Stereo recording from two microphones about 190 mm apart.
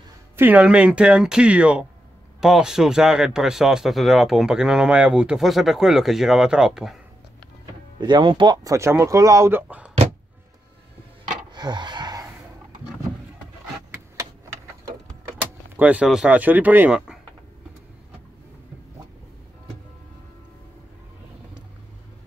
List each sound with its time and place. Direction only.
0.4 s speech: 10° right (ahead or behind)
8.0 s speech: 25° right (ahead or behind); by 9.9 s 10° right (ahead or behind)
11.5 s a sound: 20° right (ahead or behind)
15.7 s speech: 10° right (ahead or behind)